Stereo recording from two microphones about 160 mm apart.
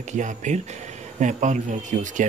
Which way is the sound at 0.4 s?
50° right (ahead or behind).